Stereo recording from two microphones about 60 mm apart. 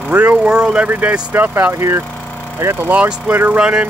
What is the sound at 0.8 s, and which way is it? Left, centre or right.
Speech, right.